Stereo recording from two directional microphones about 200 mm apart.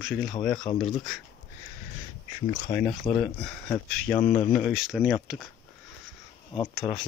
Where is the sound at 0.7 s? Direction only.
35° left (ahead or behind).